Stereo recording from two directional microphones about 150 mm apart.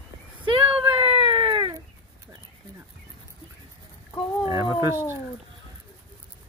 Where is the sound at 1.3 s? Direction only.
25° right (ahead or behind).